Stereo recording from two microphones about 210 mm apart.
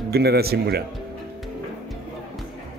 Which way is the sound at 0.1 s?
50° right (ahead or behind).